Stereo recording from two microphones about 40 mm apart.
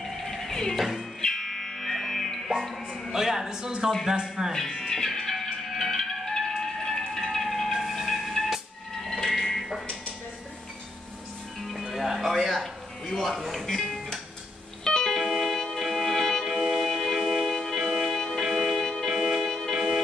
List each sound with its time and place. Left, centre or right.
0.2 s music: centre
0.7 s music: centre
1.2 s music: centre
3.1 s speech: centre
4.5 s music: centre
7.7 s a sound: centre
11.6 s music: centre
13.7 s music: centre
16.4 s music: centre
19.4 s music: centre